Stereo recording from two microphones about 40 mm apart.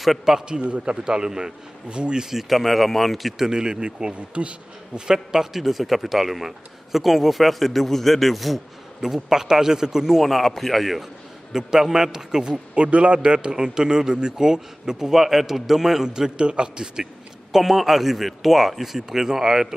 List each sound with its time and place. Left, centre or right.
0.2 s a man's voice: centre
0.6 s a man's voice: right
2.2 s a man's voice: centre
3.4 s a man's voice: centre
5.0 s a man's voice: centre
9.0 s a man's voice: centre
10.2 s a man's voice: centre
11.5 s a man's voice: centre
12.7 s a man's voice: right; by 19.7 s centre